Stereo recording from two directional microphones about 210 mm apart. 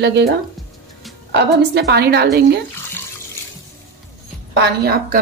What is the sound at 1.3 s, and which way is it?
A woman's voice, 50° right (ahead or behind).